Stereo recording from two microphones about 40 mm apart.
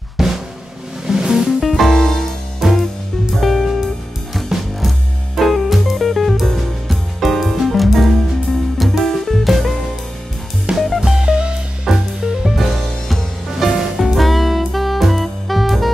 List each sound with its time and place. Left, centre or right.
0.2 s drum: centre
1.0 s music: centre
1.6 s music: centre
2.6 s music: centre
11.0 s music: centre
11.9 s music: centre